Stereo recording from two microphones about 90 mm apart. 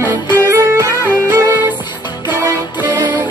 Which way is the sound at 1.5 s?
20° right (ahead or behind).